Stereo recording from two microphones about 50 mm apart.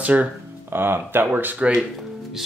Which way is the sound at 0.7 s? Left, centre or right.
Right.